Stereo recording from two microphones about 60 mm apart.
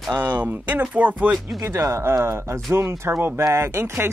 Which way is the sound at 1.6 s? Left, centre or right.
Right.